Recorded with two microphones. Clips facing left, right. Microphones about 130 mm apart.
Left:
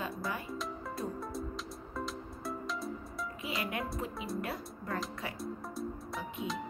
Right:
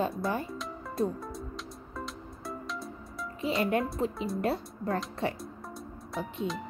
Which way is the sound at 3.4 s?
30° right (ahead or behind).